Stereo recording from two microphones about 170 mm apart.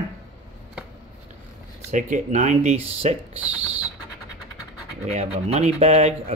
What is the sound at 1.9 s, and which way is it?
Speech, 45° right (ahead or behind).